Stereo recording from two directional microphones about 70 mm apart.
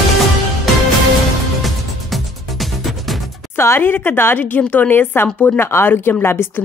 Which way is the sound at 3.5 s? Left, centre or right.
Left.